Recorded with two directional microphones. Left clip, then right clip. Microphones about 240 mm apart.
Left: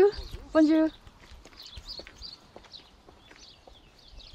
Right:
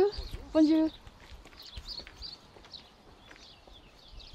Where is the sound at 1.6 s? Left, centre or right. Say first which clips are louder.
Left 1 dB; left.